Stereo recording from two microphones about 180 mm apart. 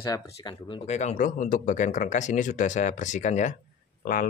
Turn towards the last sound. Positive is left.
turn(degrees=55)  # may be behind; listen again after turning